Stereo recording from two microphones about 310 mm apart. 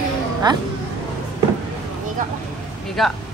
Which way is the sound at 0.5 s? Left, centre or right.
Centre.